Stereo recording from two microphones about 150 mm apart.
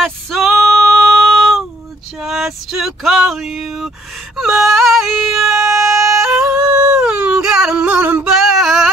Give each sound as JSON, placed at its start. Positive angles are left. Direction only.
{"t": 0.0, "sound": "female singing", "side_deg": 0}
{"t": 0.9, "sound": "a sound", "side_deg": 0}
{"t": 5.7, "sound": "emergency vehicle", "side_deg": -20}
{"t": 6.2, "sound": "yodeling", "side_deg": -5}
{"t": 8.4, "sound": "singing", "side_deg": 0}